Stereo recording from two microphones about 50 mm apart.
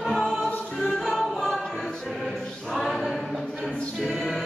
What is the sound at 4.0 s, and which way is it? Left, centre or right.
Music, centre.